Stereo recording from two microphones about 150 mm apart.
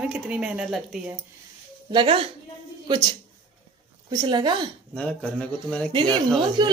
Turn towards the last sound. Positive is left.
turn(degrees=-30)  # may be behind; listen again after turning